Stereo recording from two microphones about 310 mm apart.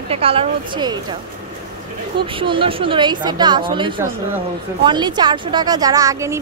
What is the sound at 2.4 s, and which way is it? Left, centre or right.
A woman's voice, centre.